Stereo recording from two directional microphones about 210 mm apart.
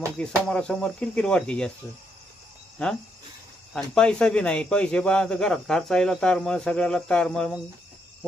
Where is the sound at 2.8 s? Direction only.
5° left (ahead or behind).